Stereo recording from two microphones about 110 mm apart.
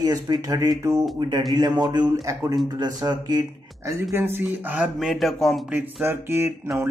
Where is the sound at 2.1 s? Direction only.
30° right (ahead or behind).